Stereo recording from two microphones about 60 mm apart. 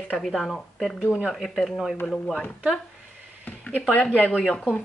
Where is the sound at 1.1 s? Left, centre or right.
Centre.